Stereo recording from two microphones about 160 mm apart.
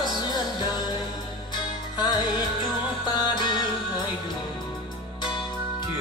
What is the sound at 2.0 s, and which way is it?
Music, 30° left (ahead or behind).